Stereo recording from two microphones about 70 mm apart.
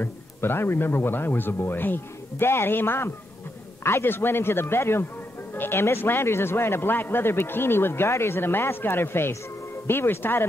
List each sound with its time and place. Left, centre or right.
0.0 s a man's voice: left